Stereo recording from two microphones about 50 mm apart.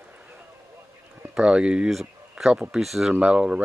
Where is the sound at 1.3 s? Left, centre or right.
Centre.